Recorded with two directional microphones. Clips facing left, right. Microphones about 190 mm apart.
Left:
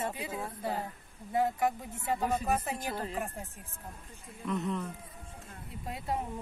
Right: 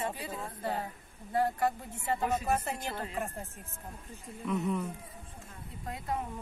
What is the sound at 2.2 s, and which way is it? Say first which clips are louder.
Speech: even; centre (ahead or behind).